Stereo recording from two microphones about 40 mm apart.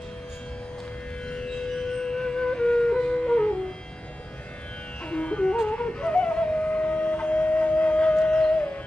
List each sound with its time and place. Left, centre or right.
1.3 s music: centre
5.1 s music: left
5.7 s flute: left
8.3 s music: left